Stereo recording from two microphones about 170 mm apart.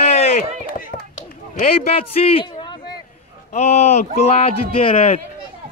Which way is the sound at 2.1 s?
35° left (ahead or behind).